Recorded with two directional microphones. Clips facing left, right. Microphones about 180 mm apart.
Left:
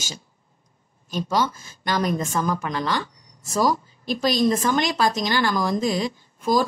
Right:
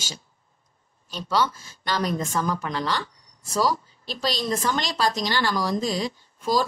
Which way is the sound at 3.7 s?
50° left (ahead or behind).